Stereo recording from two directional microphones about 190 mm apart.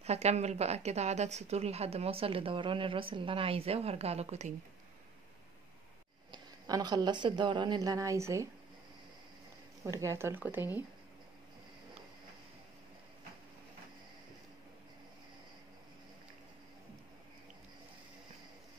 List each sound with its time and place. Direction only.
0.0 s a woman's voice: 35° right (ahead or behind)
6.3 s speech: 20° right (ahead or behind)
9.8 s speech: 15° right (ahead or behind)